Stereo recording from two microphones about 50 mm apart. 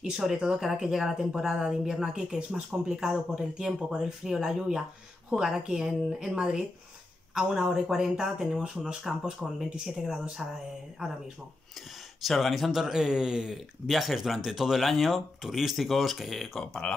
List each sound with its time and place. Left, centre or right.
0.2 s speech: centre
12.2 s speech: centre
12.8 s speech: centre